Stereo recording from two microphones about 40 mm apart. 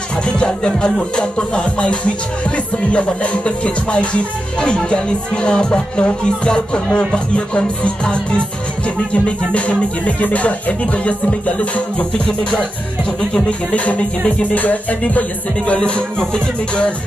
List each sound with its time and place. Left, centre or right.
0.7 s music: left
13.3 s music: left